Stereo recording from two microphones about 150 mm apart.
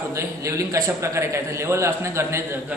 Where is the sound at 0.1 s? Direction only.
20° right (ahead or behind).